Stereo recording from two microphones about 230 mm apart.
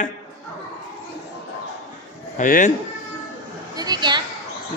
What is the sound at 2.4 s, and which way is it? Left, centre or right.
Speech, left.